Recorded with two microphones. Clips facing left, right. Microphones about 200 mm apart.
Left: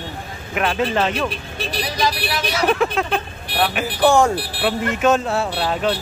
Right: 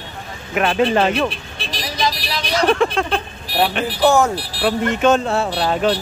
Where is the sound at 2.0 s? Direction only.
10° left (ahead or behind).